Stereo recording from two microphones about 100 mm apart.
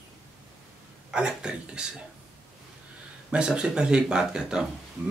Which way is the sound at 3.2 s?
10° right (ahead or behind).